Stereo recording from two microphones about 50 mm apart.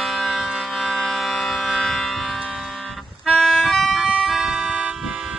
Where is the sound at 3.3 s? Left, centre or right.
Centre.